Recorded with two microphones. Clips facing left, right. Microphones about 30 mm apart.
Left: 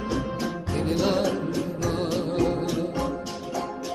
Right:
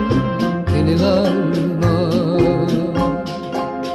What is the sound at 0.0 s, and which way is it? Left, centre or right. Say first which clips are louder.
Music: right 10 dB; right.